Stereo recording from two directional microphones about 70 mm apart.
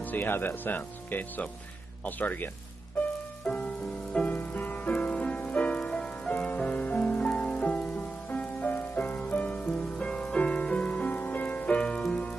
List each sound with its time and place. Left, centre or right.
0.0 s speech: left
3.4 s music: centre